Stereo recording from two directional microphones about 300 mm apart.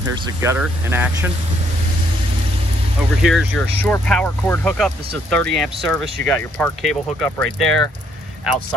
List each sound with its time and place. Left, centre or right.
0.1 s speech: centre
3.3 s speech: centre